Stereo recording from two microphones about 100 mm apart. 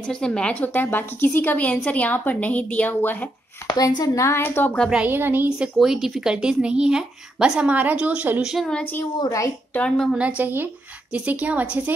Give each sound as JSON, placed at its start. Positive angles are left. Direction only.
{"t": 0.0, "sound": "a woman's voice", "side_deg": 10}
{"t": 3.7, "sound": "a woman's voice", "side_deg": 40}
{"t": 4.9, "sound": "speech", "side_deg": -20}
{"t": 5.6, "sound": "speech", "side_deg": -5}
{"t": 9.2, "sound": "a woman's voice", "side_deg": 35}
{"t": 9.8, "sound": "a woman's voice", "side_deg": 5}
{"t": 10.1, "sound": "speech", "side_deg": -15}